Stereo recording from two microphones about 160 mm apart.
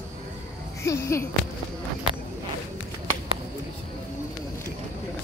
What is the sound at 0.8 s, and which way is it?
Speech, 15° left (ahead or behind).